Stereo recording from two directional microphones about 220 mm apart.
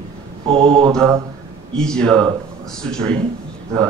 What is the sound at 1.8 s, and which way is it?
Speech, 5° left (ahead or behind).